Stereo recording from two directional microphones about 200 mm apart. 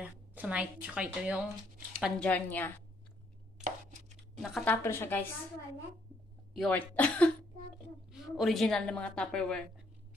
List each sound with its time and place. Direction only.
0.0 s a woman's voice: 5° right (ahead or behind)
3.6 s a sound: 35° right (ahead or behind)
4.4 s a woman's voice: centre (ahead or behind)
4.8 s a woman's voice: 10° left (ahead or behind)
6.6 s a woman's voice: 5° left (ahead or behind)